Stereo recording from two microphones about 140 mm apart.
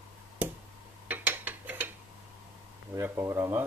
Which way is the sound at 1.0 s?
15° right (ahead or behind).